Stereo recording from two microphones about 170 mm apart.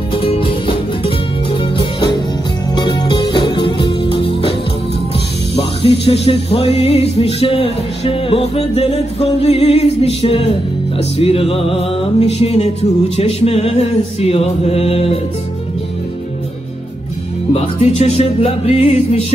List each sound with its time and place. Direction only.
0.1 s music: 30° left (ahead or behind)
5.6 s music: 35° left (ahead or behind)
17.5 s music: 40° left (ahead or behind)